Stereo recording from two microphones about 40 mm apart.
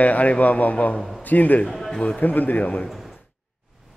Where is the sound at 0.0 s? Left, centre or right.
Left.